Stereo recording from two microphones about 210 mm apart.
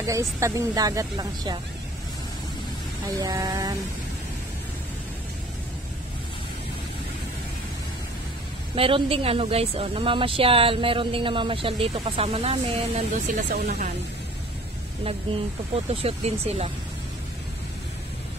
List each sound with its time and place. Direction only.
0.0 s speech: 15° right (ahead or behind)
3.2 s speech: 15° right (ahead or behind)
8.7 s speech: 25° right (ahead or behind)
15.7 s speech: 30° right (ahead or behind)